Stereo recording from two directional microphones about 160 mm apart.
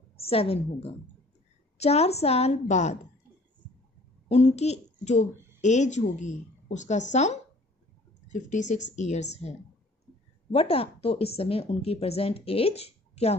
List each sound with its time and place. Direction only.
0.2 s speech: 35° left (ahead or behind)
4.3 s a child's voice: 45° left (ahead or behind)
10.5 s speech: 40° left (ahead or behind)